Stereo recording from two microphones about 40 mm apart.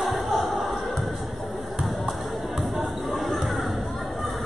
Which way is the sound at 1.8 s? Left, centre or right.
Centre.